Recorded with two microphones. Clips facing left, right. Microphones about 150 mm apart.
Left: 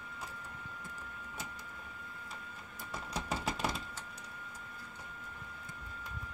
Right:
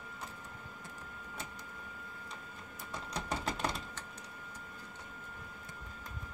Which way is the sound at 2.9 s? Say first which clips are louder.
Even; 5° left (ahead or behind).